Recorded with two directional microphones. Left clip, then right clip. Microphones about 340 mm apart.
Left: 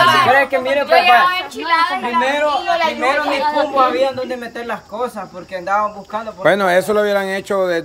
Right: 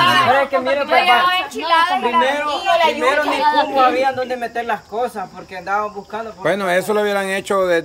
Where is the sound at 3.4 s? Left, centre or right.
Right.